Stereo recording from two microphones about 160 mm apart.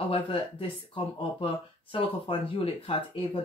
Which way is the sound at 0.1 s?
35° left (ahead or behind).